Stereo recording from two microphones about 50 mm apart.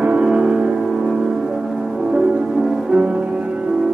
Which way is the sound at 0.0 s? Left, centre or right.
Right.